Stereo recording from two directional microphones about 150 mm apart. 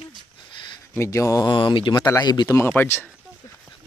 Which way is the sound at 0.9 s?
20° left (ahead or behind).